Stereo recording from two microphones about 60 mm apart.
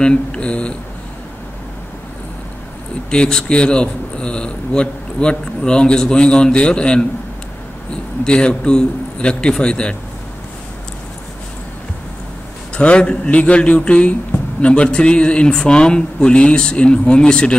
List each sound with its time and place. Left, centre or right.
0.0 s speech: centre
3.1 s a man's voice: centre
8.2 s a man's voice: centre
12.7 s a man's voice: centre